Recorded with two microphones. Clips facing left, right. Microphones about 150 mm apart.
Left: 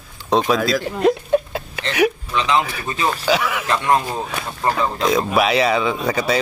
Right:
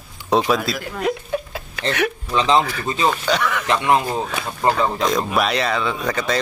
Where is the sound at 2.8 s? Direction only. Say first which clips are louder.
Right 2 dB; 20° right (ahead or behind).